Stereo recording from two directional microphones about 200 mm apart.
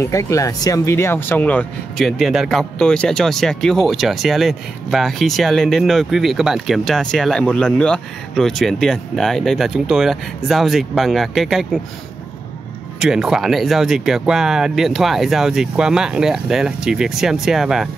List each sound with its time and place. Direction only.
0.0 s speech: 15° left (ahead or behind)
13.0 s speech: centre (ahead or behind)